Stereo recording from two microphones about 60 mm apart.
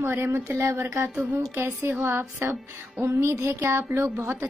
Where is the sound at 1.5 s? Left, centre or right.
Right.